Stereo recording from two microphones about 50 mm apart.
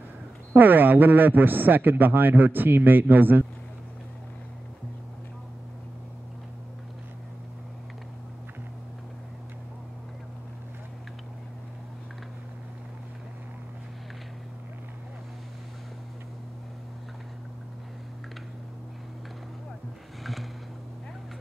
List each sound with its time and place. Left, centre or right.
0.6 s a man's voice: right